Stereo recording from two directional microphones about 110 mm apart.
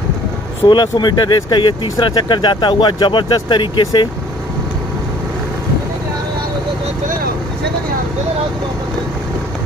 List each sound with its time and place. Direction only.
0.7 s speech: 40° left (ahead or behind)